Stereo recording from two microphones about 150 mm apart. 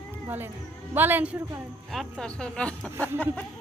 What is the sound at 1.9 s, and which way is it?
Speech, 5° left (ahead or behind).